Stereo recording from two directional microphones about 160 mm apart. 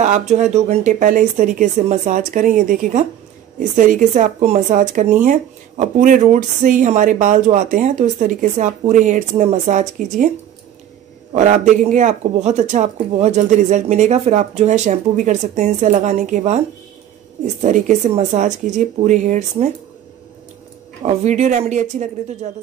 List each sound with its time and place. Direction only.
0.0 s speech: 45° right (ahead or behind)
11.3 s speech: 50° right (ahead or behind)
21.0 s speech: 40° right (ahead or behind)